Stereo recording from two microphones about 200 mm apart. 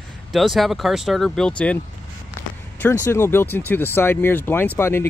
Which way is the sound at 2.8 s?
10° left (ahead or behind).